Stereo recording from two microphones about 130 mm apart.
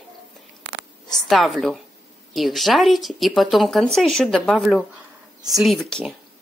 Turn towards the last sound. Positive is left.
turn(degrees=5)  # may be behind; listen again after turning